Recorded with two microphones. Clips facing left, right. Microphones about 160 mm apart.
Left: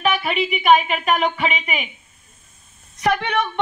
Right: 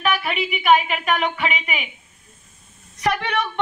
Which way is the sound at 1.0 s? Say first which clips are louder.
Left 2 dB; 35° left (ahead or behind).